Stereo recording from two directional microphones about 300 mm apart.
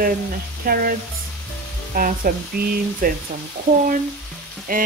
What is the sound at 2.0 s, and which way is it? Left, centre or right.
Speech, right.